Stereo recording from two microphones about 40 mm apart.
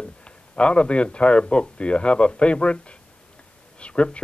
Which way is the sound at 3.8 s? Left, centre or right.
Left.